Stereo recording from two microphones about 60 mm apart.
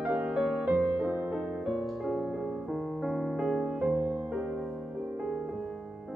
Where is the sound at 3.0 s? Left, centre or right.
Centre.